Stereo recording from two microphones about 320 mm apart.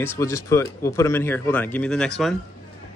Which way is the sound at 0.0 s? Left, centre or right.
Centre.